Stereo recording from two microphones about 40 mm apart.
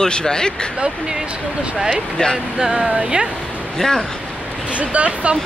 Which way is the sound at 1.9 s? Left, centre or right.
Centre.